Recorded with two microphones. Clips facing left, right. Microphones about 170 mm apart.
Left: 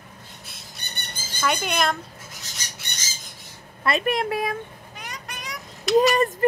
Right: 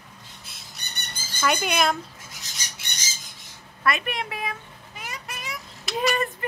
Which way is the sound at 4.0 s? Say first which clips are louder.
Left 7 dB; 40° left (ahead or behind).